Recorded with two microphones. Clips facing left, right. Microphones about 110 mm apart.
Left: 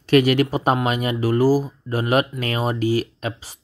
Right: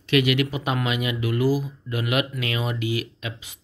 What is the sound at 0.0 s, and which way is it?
Speech, 40° left (ahead or behind).